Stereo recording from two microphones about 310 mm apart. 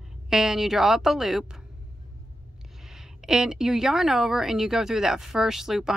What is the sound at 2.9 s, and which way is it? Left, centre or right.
Speech, centre.